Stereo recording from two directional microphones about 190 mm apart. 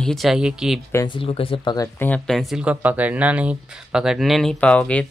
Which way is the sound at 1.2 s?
30° left (ahead or behind).